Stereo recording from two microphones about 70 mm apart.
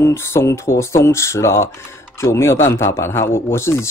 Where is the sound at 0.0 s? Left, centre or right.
Left.